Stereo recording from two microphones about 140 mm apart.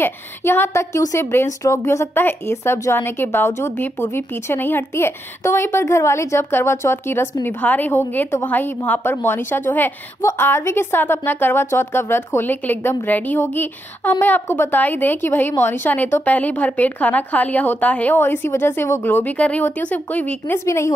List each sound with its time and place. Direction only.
0.0 s a woman's voice: 15° left (ahead or behind)